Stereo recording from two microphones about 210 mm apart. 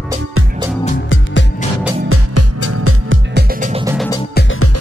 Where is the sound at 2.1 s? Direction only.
90° right.